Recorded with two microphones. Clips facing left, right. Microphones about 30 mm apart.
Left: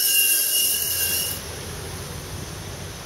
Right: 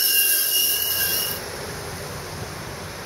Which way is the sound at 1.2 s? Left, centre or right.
Right.